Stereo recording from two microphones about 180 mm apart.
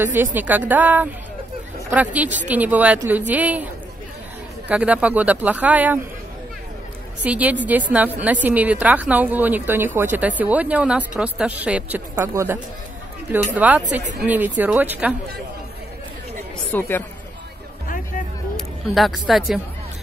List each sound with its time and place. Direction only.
0.0 s a woman's voice: 10° right (ahead or behind)
4.6 s a woman's voice: 5° right (ahead or behind)
7.2 s a woman's voice: 10° right (ahead or behind)
13.6 s a woman's voice: 10° right (ahead or behind)
16.7 s speech: 10° left (ahead or behind)
17.8 s music: 50° left (ahead or behind)
18.9 s a woman's voice: centre (ahead or behind)